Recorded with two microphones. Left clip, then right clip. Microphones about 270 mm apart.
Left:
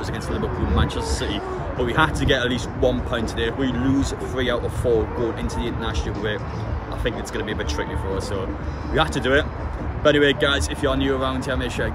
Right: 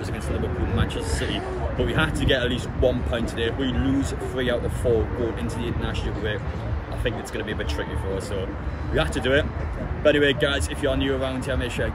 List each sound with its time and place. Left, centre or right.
0.7 s speech: centre
7.1 s speech: centre
8.9 s speech: centre